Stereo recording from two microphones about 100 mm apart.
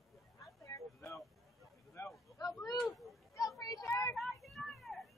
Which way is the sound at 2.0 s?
25° left (ahead or behind).